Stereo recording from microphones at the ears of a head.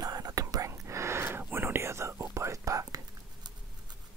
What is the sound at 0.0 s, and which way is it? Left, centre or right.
Whispering, right.